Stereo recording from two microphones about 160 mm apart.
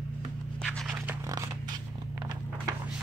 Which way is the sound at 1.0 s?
15° right (ahead or behind).